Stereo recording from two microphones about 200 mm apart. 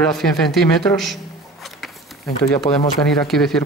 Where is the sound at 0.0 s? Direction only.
Centre (ahead or behind).